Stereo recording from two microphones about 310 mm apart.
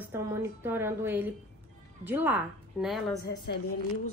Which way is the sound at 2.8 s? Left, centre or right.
Centre.